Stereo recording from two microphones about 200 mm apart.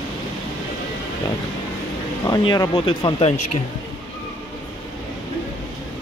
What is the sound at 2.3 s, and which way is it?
Speech, 20° left (ahead or behind).